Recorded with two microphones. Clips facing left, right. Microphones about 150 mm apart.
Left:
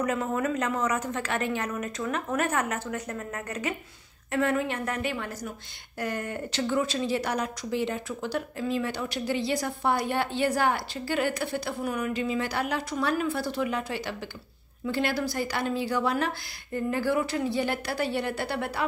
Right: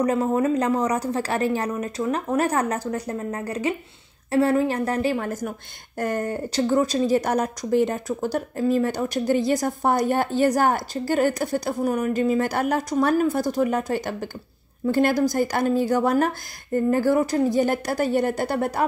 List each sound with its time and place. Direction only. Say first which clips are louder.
0.0 s a woman's voice: right 7 dB; 35° right (ahead or behind)